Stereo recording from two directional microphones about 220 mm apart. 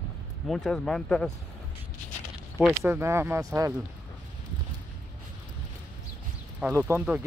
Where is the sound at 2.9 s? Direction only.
10° right (ahead or behind).